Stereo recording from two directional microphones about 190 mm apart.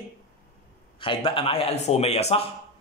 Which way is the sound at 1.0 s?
30° left (ahead or behind).